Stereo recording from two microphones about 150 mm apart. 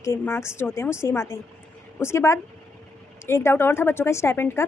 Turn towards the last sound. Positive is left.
turn(degrees=20)  # may be behind; listen again after turning